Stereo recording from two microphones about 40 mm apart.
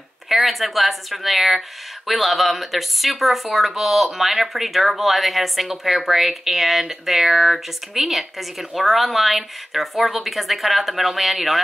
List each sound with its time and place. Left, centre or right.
0.3 s speech: centre